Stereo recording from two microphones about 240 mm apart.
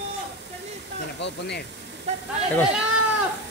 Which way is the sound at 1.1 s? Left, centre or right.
Left.